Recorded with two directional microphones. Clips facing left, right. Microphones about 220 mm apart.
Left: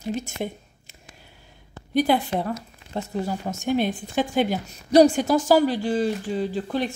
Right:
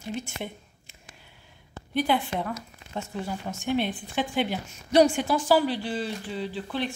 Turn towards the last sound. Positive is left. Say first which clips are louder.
# left 5 dB
turn(degrees=45)  # may be behind; listen again after turning